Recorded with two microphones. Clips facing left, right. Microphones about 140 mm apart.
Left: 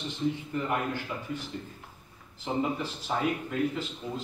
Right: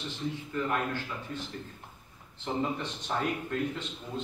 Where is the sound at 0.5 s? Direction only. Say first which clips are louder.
Left 1 dB; 15° left (ahead or behind).